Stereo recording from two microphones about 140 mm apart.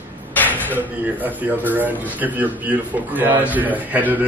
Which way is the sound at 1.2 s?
10° right (ahead or behind).